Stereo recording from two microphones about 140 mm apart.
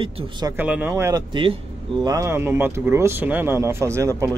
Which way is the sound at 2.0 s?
20° right (ahead or behind).